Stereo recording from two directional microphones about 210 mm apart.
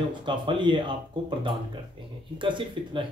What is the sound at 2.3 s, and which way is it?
Speech, 25° right (ahead or behind).